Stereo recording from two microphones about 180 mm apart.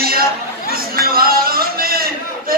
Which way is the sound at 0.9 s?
55° right (ahead or behind).